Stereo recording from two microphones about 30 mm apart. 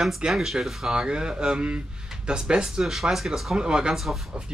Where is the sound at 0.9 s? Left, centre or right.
Right.